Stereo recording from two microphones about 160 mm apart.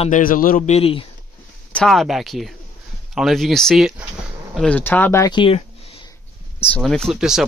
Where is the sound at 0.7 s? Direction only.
40° left (ahead or behind).